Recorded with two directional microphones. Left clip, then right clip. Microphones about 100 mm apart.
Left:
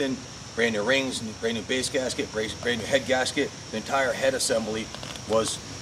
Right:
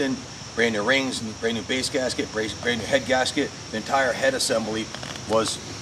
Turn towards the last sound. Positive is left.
turn(degrees=10)  # may be behind; listen again after turning